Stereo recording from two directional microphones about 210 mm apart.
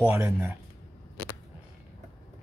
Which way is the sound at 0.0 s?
10° right (ahead or behind).